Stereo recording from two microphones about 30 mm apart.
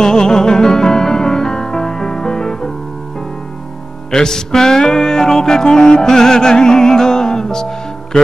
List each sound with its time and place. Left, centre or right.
0.0 s music: left
4.1 s music: left